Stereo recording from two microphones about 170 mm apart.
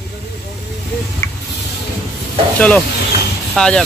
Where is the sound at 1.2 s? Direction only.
15° left (ahead or behind).